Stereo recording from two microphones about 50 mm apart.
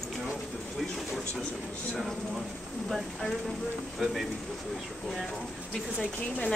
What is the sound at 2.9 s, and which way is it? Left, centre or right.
Speech, centre.